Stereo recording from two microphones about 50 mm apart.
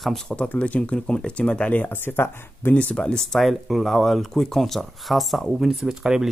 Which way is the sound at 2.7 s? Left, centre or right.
Left.